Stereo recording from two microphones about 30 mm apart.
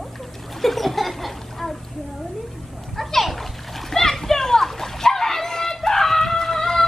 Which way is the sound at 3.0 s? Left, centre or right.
Centre.